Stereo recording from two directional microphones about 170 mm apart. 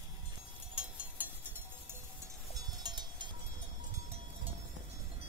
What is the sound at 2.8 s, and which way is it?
Cowbell, 25° right (ahead or behind).